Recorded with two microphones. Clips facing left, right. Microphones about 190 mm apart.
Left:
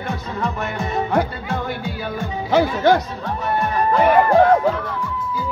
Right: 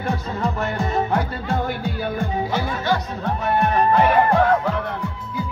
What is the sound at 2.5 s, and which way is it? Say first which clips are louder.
Music: left 12 dB; 55° left (ahead or behind).